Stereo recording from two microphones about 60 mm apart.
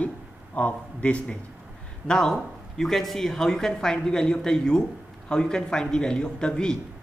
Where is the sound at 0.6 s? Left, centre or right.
Left.